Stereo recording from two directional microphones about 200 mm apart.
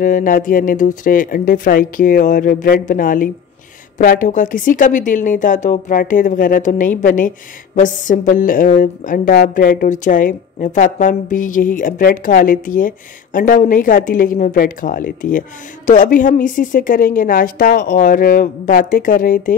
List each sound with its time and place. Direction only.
0.0 s speech: 40° left (ahead or behind)